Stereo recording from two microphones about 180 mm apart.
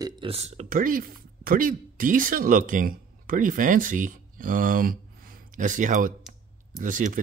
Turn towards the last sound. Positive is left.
turn(degrees=-50)  # may be behind; listen again after turning